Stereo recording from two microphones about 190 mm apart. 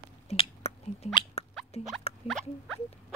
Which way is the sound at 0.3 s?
35° left (ahead or behind).